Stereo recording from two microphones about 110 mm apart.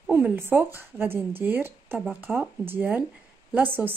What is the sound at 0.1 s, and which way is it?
A woman's voice, 20° right (ahead or behind).